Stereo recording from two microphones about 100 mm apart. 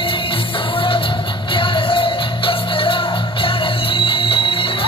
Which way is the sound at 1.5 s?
60° left (ahead or behind).